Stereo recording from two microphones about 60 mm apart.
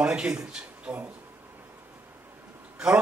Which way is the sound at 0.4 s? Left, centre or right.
Centre.